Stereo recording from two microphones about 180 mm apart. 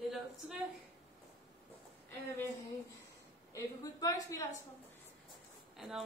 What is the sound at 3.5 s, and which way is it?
Speech, 20° left (ahead or behind).